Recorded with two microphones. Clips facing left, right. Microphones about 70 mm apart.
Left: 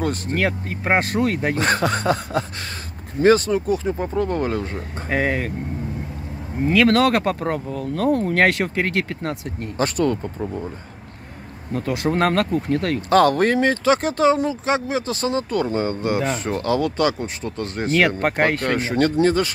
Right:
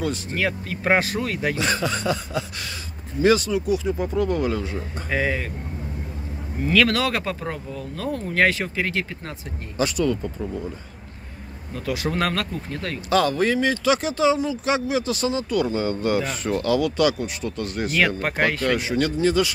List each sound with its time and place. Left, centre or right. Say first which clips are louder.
0.0 s speech: left 3 dB; left
6.6 s speech: left 2 dB; centre
6.9 s speech: left 6 dB; left
11.7 s speech: left 4 dB; left
18.0 s speech: left 2 dB; left